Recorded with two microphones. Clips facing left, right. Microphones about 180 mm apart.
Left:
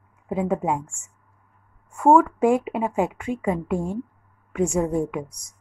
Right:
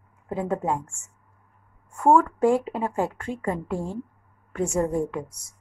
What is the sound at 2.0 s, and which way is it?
A woman's voice, 10° left (ahead or behind).